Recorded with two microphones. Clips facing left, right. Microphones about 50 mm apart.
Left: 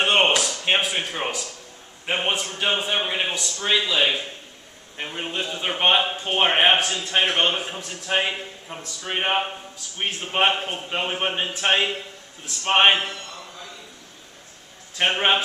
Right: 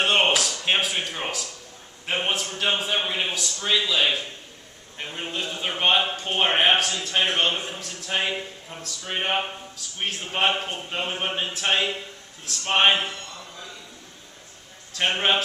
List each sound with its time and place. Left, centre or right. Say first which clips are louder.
0.0 s a sound: left 2 dB; centre
2.0 s a man's voice: left 2 dB; centre
15.0 s a man's voice: left 2 dB; centre